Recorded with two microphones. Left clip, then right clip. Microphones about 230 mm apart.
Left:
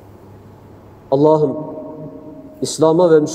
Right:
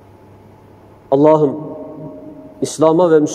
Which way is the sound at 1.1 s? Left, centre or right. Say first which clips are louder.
Right 2 dB; right.